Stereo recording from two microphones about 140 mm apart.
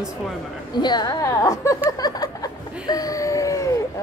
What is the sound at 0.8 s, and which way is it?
Speech, 30° left (ahead or behind).